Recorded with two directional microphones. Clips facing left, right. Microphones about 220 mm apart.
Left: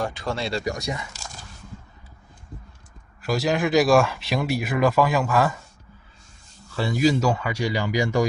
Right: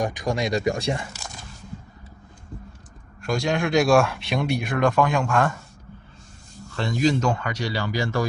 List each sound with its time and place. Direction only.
0.0 s speech: 15° right (ahead or behind)
3.2 s speech: 5° left (ahead or behind)
6.7 s speech: 5° left (ahead or behind)